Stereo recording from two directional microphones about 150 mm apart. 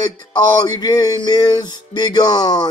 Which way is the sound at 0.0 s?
30° left (ahead or behind).